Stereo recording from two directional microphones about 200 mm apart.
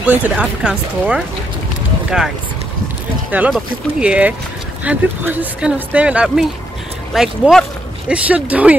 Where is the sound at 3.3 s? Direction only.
5° right (ahead or behind).